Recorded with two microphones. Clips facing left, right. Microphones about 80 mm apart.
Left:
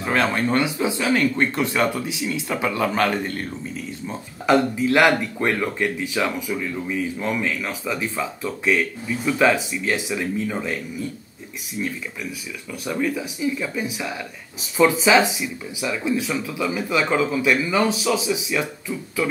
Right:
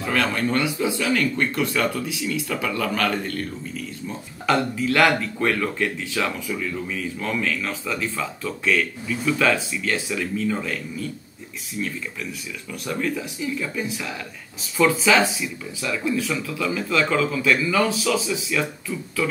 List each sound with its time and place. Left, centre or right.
0.0 s speech: left
4.5 s speech: centre